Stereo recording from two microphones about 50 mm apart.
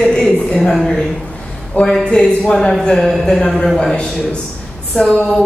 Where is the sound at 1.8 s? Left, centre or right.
Centre.